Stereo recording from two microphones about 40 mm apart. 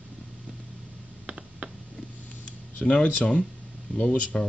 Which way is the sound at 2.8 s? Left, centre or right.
Left.